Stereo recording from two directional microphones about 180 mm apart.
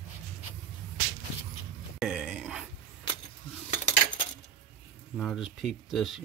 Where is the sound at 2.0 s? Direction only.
5° right (ahead or behind).